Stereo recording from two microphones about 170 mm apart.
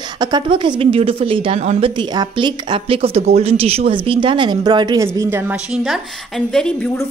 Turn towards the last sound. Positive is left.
turn(degrees=5)  # may be behind; listen again after turning